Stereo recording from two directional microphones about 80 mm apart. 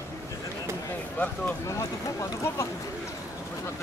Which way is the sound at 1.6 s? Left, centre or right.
Left.